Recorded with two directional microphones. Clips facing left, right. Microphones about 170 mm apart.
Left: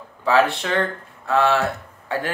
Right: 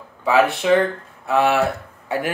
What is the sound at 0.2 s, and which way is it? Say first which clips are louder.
Speech: right 1 dB; 15° right (ahead or behind).